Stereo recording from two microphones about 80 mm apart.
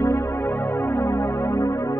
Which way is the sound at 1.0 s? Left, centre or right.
Left.